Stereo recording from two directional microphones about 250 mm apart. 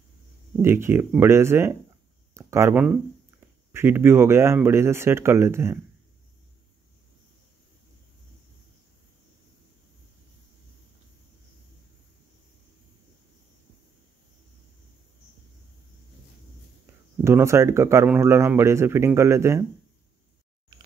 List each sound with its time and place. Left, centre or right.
0.6 s speech: centre
17.2 s speech: centre
20.7 s a sound: centre